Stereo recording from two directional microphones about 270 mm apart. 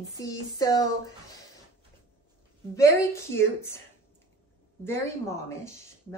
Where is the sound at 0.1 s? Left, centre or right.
Centre.